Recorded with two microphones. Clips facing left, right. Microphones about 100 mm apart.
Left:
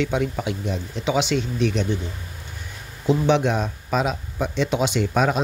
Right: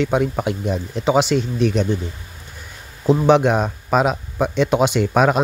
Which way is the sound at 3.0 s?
40° right (ahead or behind).